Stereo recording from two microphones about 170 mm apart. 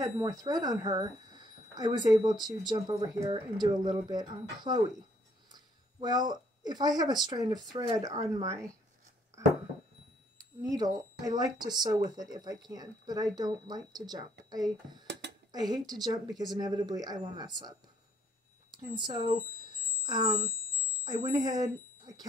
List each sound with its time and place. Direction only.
0.0 s speech: 20° right (ahead or behind)
2.3 s speech: centre (ahead or behind)
2.7 s speech: 20° right (ahead or behind)
5.9 s speech: 25° right (ahead or behind)
10.3 s speech: 20° right (ahead or behind)